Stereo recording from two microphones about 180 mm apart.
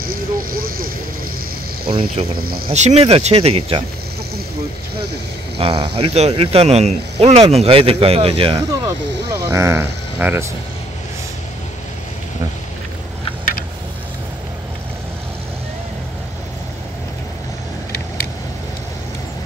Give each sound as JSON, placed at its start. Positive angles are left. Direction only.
{"t": 0.0, "sound": "vehicle", "side_deg": -55}
{"t": 1.9, "sound": "speech", "side_deg": -30}
{"t": 2.3, "sound": "speech", "side_deg": -55}
{"t": 2.7, "sound": "speech", "side_deg": -40}
{"t": 5.6, "sound": "speech", "side_deg": -30}
{"t": 8.8, "sound": "speech", "side_deg": -15}